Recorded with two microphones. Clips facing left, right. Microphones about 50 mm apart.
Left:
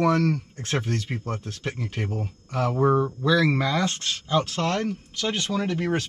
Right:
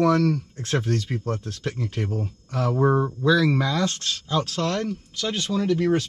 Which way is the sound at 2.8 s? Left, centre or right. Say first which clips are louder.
Even; centre.